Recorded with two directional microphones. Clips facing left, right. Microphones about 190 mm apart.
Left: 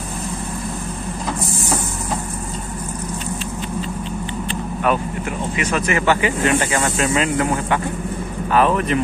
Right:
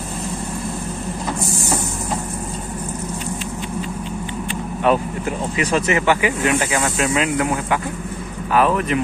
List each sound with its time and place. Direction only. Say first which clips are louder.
4.9 s speech: right 3 dB; 25° right (ahead or behind)
6.0 s speech: even; 10° right (ahead or behind)